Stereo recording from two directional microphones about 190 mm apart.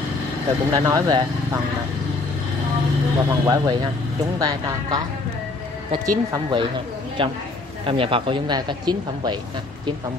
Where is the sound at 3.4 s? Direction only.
20° right (ahead or behind).